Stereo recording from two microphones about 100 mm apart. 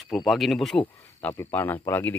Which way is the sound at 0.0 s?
Centre (ahead or behind).